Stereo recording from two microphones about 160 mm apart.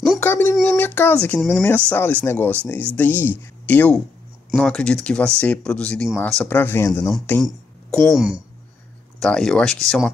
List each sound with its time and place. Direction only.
0.2 s speech: 15° left (ahead or behind)
7.9 s speech: centre (ahead or behind)